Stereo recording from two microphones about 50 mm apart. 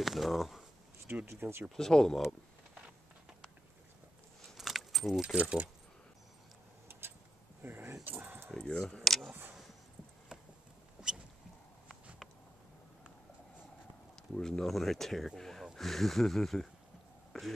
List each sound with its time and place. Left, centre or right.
0.0 s speech: centre
1.2 s speech: right
1.8 s speech: centre
4.6 s keys jangling: centre
5.2 s speech: right
6.9 s a sound: right
8.2 s keys jangling: right
8.5 s speech: centre
11.0 s boat: right
14.3 s speech: centre